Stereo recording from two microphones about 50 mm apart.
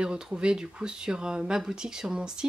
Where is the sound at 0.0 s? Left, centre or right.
Centre.